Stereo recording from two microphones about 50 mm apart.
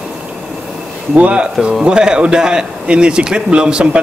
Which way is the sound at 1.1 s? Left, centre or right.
Right.